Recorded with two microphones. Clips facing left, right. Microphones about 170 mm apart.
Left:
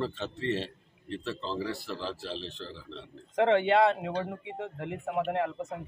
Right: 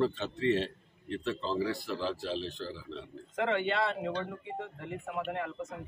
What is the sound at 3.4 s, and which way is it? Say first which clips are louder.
Speech: left 7 dB; 50° left (ahead or behind).